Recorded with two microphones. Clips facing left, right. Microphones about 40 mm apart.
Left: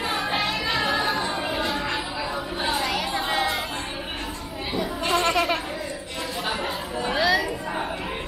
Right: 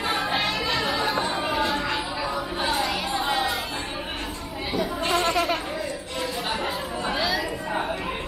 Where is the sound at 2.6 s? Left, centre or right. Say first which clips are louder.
Left 1 dB; centre.